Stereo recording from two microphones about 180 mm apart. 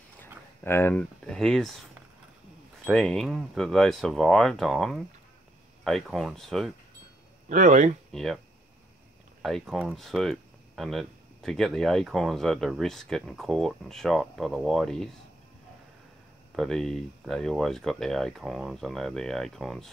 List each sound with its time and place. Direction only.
0.7 s speech: 10° left (ahead or behind)
2.8 s speech: 5° left (ahead or behind)
7.4 s speech: 45° right (ahead or behind)
8.1 s speech: centre (ahead or behind)
9.4 s speech: centre (ahead or behind)
16.5 s speech: centre (ahead or behind)